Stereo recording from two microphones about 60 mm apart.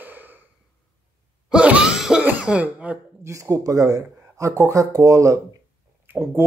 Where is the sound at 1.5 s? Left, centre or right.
Centre.